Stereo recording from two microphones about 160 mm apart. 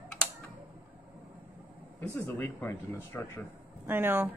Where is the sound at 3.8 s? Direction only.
15° right (ahead or behind).